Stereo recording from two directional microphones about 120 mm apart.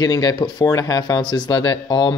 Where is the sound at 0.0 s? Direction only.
35° left (ahead or behind).